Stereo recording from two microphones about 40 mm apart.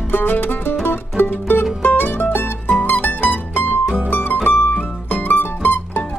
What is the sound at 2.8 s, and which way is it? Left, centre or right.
Mandolin, left.